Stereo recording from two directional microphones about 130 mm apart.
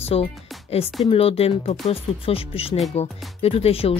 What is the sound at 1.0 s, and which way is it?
Speech, 50° left (ahead or behind).